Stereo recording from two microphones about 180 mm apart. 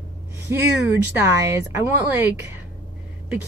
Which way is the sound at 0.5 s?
10° right (ahead or behind).